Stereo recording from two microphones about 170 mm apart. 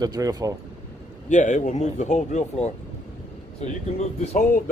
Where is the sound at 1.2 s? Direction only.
45° left (ahead or behind).